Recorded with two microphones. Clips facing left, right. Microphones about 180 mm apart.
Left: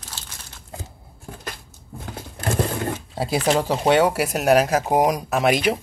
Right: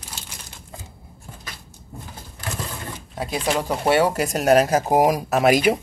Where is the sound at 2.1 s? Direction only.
60° left (ahead or behind).